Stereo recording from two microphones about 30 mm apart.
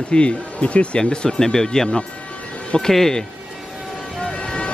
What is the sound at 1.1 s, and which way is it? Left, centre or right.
Speech, left.